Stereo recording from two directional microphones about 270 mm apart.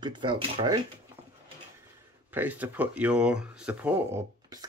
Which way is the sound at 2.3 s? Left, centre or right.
Centre.